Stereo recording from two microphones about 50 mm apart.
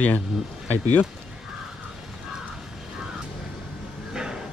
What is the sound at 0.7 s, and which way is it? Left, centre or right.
Speech, left.